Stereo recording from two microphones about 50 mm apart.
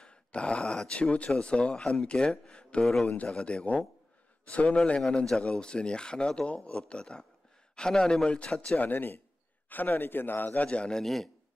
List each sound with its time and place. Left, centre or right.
0.0 s speech: left
2.9 s speech: centre
8.7 s a man's voice: left
10.7 s speech: left
11.0 s a man's voice: centre